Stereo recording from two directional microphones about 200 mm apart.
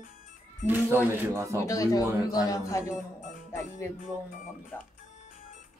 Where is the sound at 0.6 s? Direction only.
10° right (ahead or behind).